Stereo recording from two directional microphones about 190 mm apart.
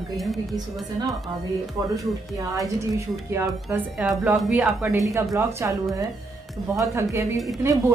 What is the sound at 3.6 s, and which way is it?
Speech, centre (ahead or behind).